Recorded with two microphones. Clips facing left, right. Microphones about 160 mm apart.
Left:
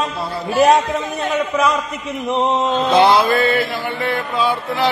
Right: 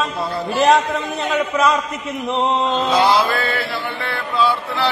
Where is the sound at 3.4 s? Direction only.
15° left (ahead or behind).